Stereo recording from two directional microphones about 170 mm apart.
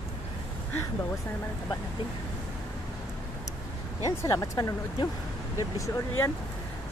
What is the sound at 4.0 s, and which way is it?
Speech, 20° left (ahead or behind).